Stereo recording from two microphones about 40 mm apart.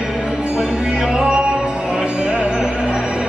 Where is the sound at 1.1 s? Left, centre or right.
Centre.